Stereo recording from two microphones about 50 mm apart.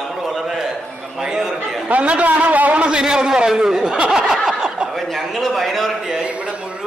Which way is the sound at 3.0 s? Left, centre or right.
Centre.